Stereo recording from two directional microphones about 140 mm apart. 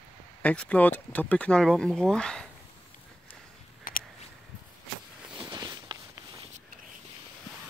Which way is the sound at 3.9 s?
85° left.